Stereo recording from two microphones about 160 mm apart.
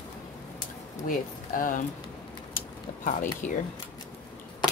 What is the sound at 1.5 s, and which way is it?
Speech, 60° left (ahead or behind).